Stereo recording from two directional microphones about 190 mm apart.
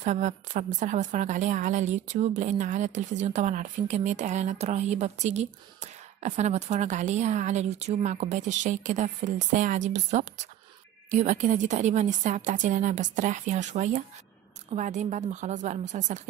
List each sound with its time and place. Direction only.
0.0 s a woman's voice: 40° right (ahead or behind)